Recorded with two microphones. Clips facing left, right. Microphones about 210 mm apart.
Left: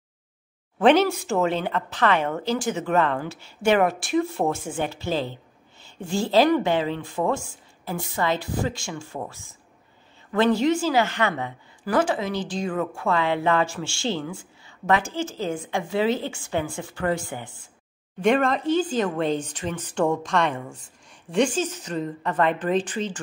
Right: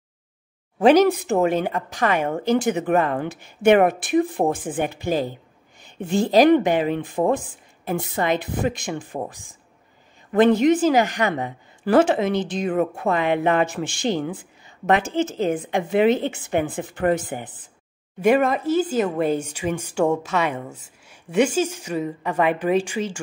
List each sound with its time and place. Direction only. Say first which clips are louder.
1.1 s a woman's voice: right 3 dB; 20° right (ahead or behind)
18.2 s speech: right 3 dB; 5° right (ahead or behind)